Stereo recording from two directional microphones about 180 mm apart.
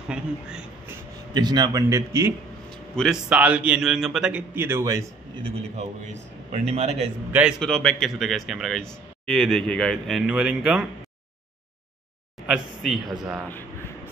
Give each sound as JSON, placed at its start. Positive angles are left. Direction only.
{"t": 0.1, "sound": "speech", "side_deg": -5}
{"t": 1.3, "sound": "a man's voice", "side_deg": -25}
{"t": 3.0, "sound": "a man's voice", "side_deg": -5}
{"t": 5.4, "sound": "a man's voice", "side_deg": -40}
{"t": 7.3, "sound": "speech", "side_deg": -5}
{"t": 12.4, "sound": "speech", "side_deg": 0}